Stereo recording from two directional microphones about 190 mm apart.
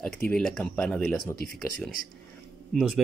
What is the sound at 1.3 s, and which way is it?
Speech, 50° left (ahead or behind).